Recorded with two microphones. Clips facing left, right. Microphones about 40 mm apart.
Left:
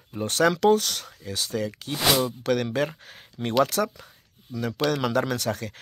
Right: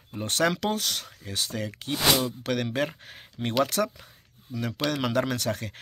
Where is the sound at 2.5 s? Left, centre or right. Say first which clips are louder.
Left 3 dB; centre.